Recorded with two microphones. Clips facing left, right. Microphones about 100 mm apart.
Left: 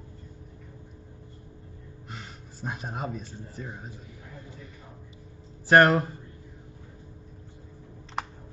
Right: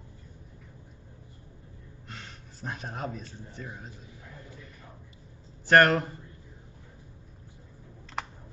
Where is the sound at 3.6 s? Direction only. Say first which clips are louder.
Left 2 dB; 20° left (ahead or behind).